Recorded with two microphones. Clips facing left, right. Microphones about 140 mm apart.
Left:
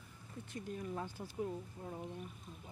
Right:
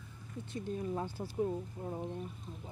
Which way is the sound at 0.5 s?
30° right (ahead or behind).